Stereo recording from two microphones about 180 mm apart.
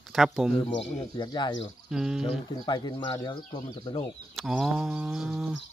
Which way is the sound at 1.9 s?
5° right (ahead or behind).